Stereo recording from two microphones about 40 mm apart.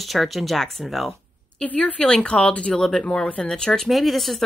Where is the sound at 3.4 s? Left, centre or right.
Centre.